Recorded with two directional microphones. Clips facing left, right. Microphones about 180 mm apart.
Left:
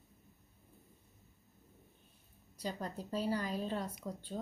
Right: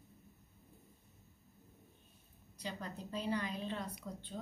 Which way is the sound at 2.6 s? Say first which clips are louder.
Left 4 dB; 40° left (ahead or behind).